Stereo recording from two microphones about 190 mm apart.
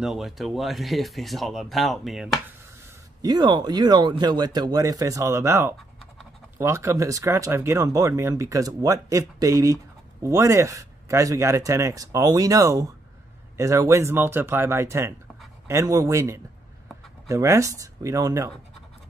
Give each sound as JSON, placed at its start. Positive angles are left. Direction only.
{"t": 0.0, "sound": "speech", "side_deg": 0}
{"t": 3.2, "sound": "speech", "side_deg": -20}